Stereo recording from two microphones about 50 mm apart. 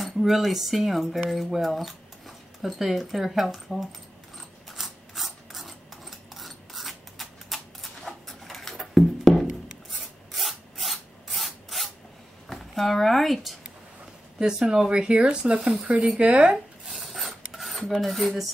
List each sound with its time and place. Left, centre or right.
0.0 s speech: centre
4.6 s a sound: centre
9.8 s filing: centre
12.4 s a sound: centre
14.4 s speech: centre
16.9 s filing: centre
18.0 s speech: centre